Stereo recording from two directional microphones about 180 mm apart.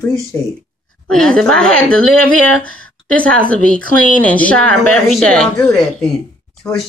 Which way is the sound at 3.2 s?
5° left (ahead or behind).